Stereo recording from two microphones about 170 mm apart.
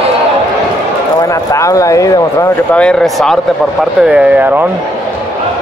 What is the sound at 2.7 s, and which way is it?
Speech, 5° left (ahead or behind).